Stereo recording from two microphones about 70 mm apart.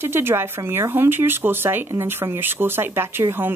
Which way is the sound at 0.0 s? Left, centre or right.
Right.